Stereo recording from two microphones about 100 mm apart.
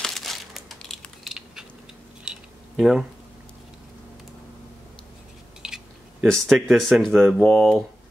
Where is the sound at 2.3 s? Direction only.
10° right (ahead or behind).